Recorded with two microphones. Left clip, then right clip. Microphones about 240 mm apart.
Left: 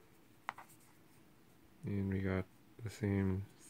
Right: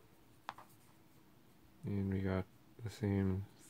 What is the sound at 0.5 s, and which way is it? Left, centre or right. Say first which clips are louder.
Writing: left 3 dB; centre.